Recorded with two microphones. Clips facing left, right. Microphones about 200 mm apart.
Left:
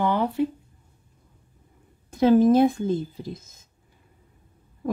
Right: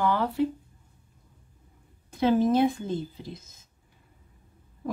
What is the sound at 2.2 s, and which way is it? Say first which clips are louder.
Speech: left 5 dB; 45° left (ahead or behind).